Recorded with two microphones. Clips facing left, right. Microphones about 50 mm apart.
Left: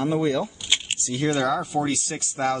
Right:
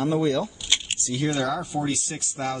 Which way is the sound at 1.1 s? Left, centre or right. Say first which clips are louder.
Left 2 dB; left.